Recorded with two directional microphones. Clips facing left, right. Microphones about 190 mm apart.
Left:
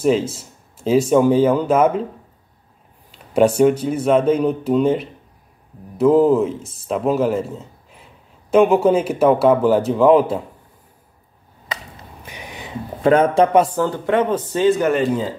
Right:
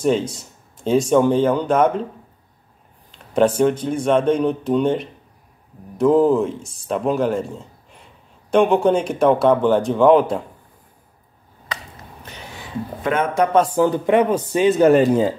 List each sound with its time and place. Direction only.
0.0 s speech: 5° left (ahead or behind)
3.1 s speech: 10° left (ahead or behind)
12.3 s a sound: 15° left (ahead or behind)
13.0 s speech: 30° left (ahead or behind)
13.7 s speech: 15° right (ahead or behind)
14.8 s speech: 40° right (ahead or behind)